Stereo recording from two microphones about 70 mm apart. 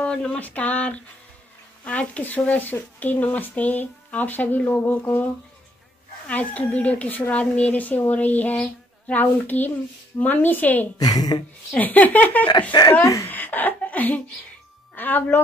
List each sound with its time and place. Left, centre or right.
0.0 s speech: centre
6.2 s speech: left
11.0 s a woman's voice: left
11.7 s speech: left
13.0 s speech: left
13.3 s a sound: left
15.0 s speech: left